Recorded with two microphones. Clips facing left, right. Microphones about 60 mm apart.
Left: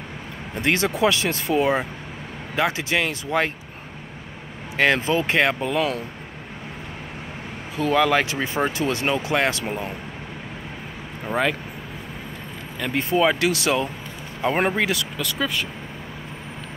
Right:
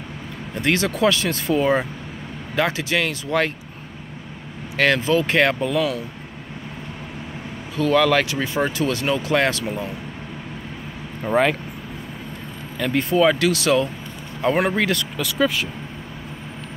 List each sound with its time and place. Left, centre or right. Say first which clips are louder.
0.6 s speech: right 1 dB; left
2.8 s speech: right 1 dB; left
4.7 s speech: right 1 dB; left
5.7 s speech: right 1 dB; left
7.7 s speech: right 2 dB; centre
8.7 s speech: right 1 dB; left
11.2 s speech: right 4 dB; centre
12.7 s speech: right 3 dB; centre
14.7 s speech: right 1 dB; centre
15.1 s speech: right 4 dB; centre